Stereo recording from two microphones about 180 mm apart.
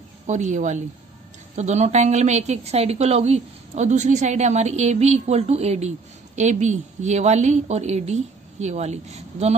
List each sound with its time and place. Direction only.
0.3 s a woman's voice: 40° right (ahead or behind)